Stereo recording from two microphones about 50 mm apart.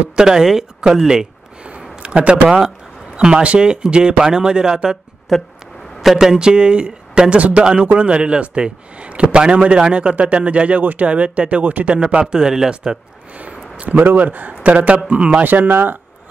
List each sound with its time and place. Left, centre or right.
0.1 s speech: centre
2.0 s speech: right
5.3 s speech: centre
6.1 s a man's voice: centre
13.7 s a man's voice: right
15.4 s a man's voice: right